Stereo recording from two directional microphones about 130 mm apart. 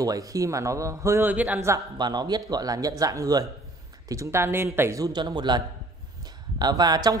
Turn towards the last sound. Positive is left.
turn(degrees=-30)  # may be behind; listen again after turning